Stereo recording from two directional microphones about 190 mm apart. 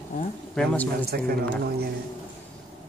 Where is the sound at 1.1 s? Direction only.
55° right (ahead or behind).